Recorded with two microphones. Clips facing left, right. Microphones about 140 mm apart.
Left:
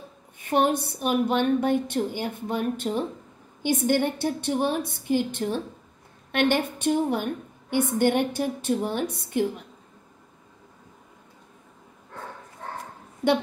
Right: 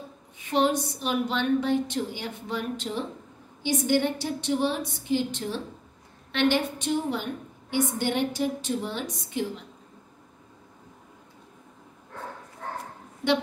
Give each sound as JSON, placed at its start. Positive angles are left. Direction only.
{"t": 0.4, "sound": "a woman's voice", "side_deg": 55}